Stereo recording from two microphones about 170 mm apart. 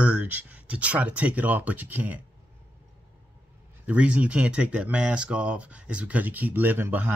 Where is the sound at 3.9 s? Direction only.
10° right (ahead or behind).